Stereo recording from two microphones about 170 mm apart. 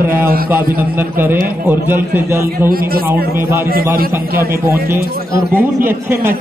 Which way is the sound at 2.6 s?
60° right (ahead or behind).